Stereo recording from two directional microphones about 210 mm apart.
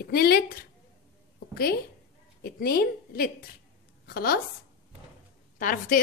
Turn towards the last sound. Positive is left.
turn(degrees=40)  # may be behind; listen again after turning